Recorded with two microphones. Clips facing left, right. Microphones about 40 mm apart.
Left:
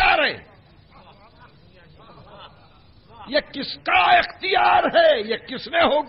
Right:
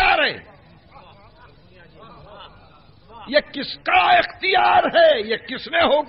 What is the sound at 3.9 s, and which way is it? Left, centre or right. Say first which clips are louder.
Speech: right 2 dB; centre.